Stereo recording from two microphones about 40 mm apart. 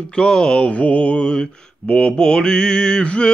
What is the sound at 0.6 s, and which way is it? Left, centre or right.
Mantra, left.